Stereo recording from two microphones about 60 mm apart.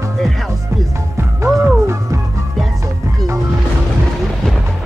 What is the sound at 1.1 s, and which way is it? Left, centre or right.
Music, right.